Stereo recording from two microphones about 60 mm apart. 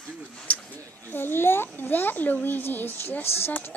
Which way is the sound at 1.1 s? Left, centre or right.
Left.